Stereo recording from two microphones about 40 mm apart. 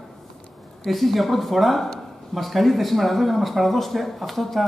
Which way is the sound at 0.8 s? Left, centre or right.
Centre.